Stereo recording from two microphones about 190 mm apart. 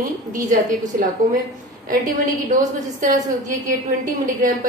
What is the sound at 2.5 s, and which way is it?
A woman's voice, 40° right (ahead or behind).